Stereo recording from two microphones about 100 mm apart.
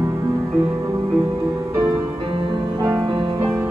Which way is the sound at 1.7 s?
30° right (ahead or behind).